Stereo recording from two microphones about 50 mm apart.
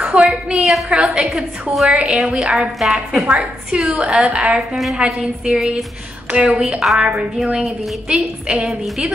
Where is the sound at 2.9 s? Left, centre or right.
Centre.